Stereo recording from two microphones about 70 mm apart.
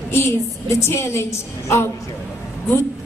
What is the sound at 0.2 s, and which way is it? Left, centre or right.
A woman's voice, left.